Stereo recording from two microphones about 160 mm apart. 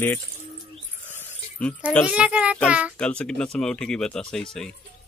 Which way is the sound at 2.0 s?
10° right (ahead or behind).